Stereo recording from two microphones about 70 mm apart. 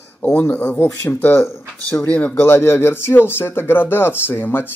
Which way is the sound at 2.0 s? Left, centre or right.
Left.